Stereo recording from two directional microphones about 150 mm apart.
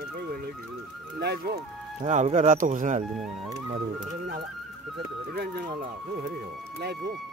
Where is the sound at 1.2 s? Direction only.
90° right.